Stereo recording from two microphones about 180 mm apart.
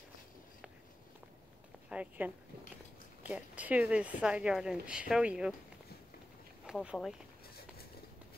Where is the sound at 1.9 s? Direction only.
5° right (ahead or behind).